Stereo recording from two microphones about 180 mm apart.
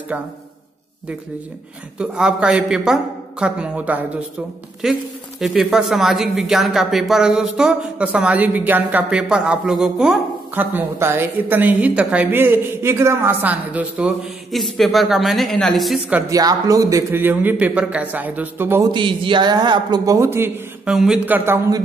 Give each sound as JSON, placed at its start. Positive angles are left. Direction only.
{"t": 0.1, "sound": "a man's voice", "side_deg": -10}
{"t": 2.0, "sound": "speech", "side_deg": -5}
{"t": 16.3, "sound": "a man's voice", "side_deg": -20}
{"t": 18.9, "sound": "a man's voice", "side_deg": -25}
{"t": 20.9, "sound": "a man's voice", "side_deg": -5}